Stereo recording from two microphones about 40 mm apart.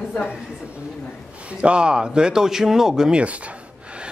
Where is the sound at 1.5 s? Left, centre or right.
Right.